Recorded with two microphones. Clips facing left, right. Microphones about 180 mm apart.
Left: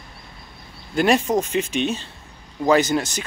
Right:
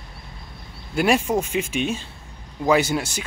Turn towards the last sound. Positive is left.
turn(degrees=-10)  # may be behind; listen again after turning